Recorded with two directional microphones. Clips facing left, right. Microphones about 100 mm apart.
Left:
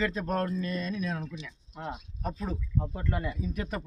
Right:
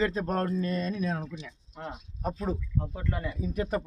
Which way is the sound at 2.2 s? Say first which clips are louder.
Right 5 dB; 25° right (ahead or behind).